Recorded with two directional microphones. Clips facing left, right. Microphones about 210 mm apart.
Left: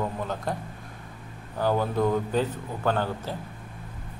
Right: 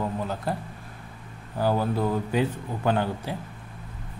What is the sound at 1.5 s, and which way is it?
A man's voice, 10° right (ahead or behind).